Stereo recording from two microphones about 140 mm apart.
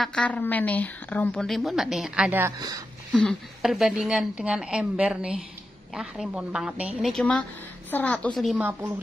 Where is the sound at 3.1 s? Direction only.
Centre (ahead or behind).